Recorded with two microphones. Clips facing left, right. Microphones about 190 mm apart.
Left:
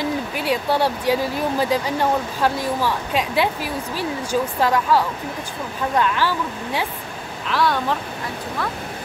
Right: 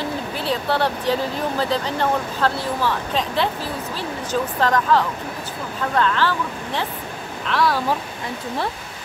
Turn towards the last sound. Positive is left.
turn(degrees=0)  # may be behind; listen again after turning